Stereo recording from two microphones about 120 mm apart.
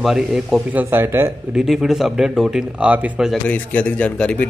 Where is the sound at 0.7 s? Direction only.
20° right (ahead or behind).